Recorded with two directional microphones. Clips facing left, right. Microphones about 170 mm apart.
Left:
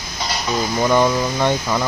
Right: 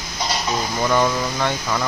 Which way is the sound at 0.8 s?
15° left (ahead or behind).